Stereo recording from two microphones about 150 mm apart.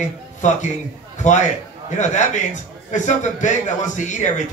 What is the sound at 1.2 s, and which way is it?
A man's voice, 55° left (ahead or behind).